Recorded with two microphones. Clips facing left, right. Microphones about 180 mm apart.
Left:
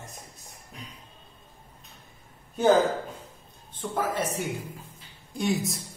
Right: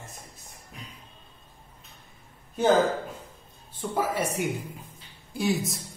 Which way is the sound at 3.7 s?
10° right (ahead or behind).